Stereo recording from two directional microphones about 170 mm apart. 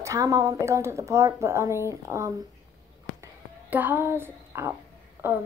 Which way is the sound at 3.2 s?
10° right (ahead or behind).